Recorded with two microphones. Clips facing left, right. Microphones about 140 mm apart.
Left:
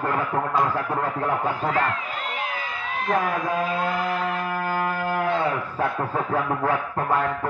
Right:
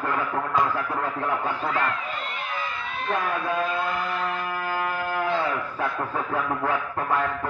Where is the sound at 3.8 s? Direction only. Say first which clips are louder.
Left 3 dB; 90° left.